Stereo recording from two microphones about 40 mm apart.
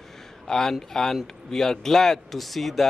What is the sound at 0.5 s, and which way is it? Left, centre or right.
Speech, centre.